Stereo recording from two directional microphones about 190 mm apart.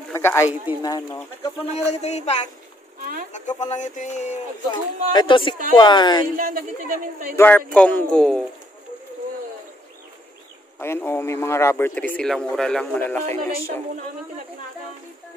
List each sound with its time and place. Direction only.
0.1 s a sound: 15° left (ahead or behind)
0.8 s speech: 20° left (ahead or behind)
1.9 s speech: 35° left (ahead or behind)
3.0 s a sound: 45° right (ahead or behind)
3.3 s speech: 40° left (ahead or behind)
4.6 s speech: 25° left (ahead or behind)
6.2 s speech: 50° right (ahead or behind)
7.3 s speech: 10° left (ahead or behind)
10.8 s speech: 15° left (ahead or behind)